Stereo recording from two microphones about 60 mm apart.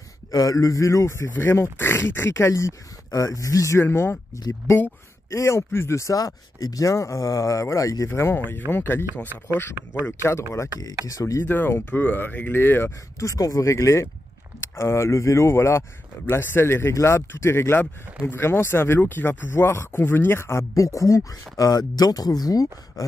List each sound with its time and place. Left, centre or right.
0.3 s speech: left
3.8 s speech: left
5.3 s speech: left
8.1 s speech: left
10.2 s speech: left
11.1 s speech: left
11.4 s speech: left
13.2 s speech: left
20.7 s speech: left